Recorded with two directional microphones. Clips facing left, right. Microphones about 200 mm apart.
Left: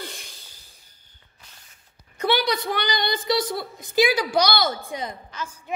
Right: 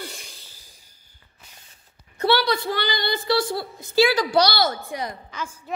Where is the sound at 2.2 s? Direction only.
15° left (ahead or behind).